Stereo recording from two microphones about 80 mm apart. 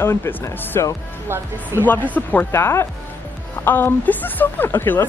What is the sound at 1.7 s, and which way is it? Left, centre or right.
Speech, right.